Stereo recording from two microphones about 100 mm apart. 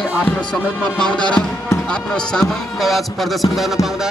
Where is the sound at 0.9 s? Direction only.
10° left (ahead or behind).